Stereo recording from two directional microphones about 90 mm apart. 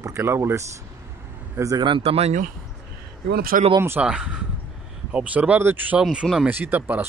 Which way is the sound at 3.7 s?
25° right (ahead or behind).